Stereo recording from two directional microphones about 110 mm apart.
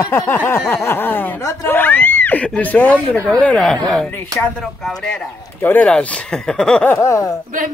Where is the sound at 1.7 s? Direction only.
15° left (ahead or behind).